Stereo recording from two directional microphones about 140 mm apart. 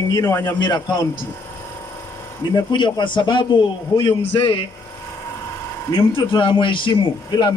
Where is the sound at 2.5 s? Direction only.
35° left (ahead or behind).